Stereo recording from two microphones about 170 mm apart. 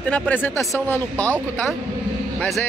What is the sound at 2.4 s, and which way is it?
Speech, 10° left (ahead or behind).